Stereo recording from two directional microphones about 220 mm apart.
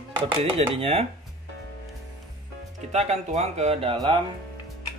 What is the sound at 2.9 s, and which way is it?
Speech, 30° right (ahead or behind).